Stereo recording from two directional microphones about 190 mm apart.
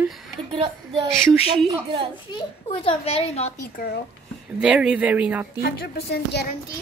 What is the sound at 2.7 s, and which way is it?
Speech, 30° left (ahead or behind).